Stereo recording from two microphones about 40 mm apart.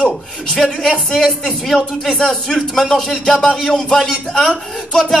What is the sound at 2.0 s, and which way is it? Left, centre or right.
Speech, centre.